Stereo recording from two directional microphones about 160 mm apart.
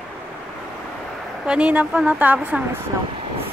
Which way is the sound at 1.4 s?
5° right (ahead or behind).